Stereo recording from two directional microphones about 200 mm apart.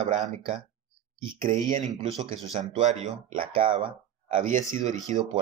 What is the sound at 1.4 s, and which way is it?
Speech, 30° right (ahead or behind).